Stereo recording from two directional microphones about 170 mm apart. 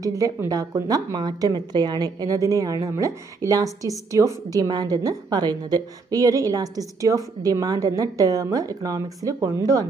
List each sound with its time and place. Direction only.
0.0 s a woman's voice: 20° right (ahead or behind)